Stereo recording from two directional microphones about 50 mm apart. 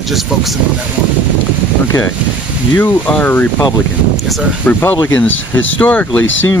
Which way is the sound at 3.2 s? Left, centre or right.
Left.